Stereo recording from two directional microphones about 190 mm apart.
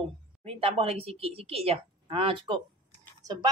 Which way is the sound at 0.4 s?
30° right (ahead or behind).